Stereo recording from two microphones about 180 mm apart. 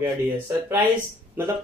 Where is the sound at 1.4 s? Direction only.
10° right (ahead or behind).